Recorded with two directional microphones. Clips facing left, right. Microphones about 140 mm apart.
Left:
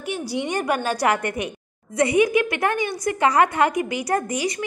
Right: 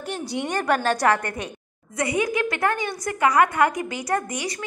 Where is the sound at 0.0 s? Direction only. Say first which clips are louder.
Left 2 dB; 5° left (ahead or behind).